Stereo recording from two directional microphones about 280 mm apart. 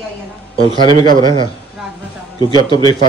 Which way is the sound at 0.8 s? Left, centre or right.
Centre.